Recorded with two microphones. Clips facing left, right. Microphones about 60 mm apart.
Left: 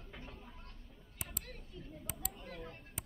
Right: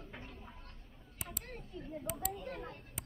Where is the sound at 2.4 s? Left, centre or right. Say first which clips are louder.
Right 4 dB; right.